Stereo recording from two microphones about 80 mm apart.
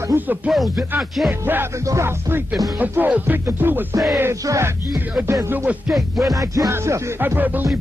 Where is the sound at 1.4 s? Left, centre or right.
Right.